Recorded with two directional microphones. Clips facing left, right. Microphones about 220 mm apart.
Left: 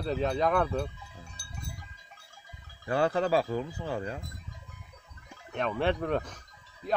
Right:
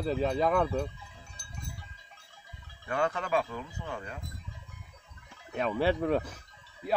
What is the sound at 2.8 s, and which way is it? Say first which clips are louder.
Speech: left 5 dB; 35° left (ahead or behind).